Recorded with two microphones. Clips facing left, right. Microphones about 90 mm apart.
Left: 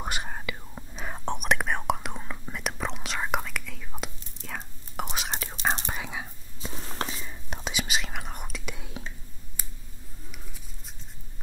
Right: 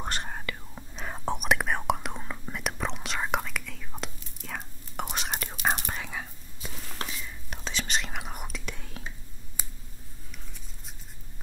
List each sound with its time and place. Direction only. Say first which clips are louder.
0.0 s whispering: left 1 dB; 5° left (ahead or behind)
5.9 s whispering: left 1 dB; 10° left (ahead or behind)
6.6 s whispering: left 4 dB; 30° left (ahead or behind)
7.7 s whispering: right 1 dB; 5° left (ahead or behind)